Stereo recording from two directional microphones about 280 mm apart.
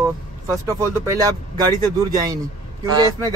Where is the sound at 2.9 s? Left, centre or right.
Centre.